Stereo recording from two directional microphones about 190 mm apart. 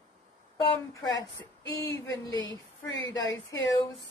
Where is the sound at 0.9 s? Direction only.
20° left (ahead or behind).